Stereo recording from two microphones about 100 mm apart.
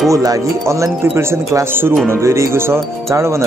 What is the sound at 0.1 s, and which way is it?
Speech, 35° right (ahead or behind).